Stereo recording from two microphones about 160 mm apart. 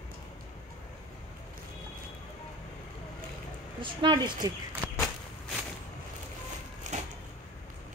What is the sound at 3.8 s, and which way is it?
Speech, 30° right (ahead or behind).